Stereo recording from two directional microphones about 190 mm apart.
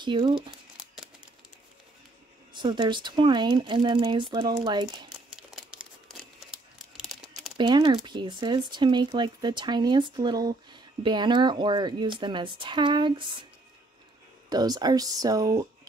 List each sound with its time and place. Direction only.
0.0 s speech: 25° right (ahead or behind)
2.5 s speech: 25° right (ahead or behind)
5.3 s crumpling: 5° right (ahead or behind)
7.0 s a sound: centre (ahead or behind)
7.5 s speech: 25° right (ahead or behind)
14.5 s speech: 20° right (ahead or behind)